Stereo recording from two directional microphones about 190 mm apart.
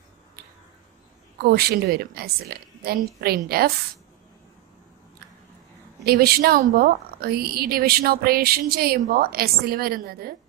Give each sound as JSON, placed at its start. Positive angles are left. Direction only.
{"t": 1.5, "sound": "a woman's voice", "side_deg": -55}
{"t": 6.0, "sound": "speech", "side_deg": -55}